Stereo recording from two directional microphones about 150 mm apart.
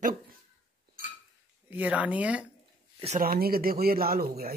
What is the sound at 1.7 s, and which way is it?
Speech, 10° right (ahead or behind).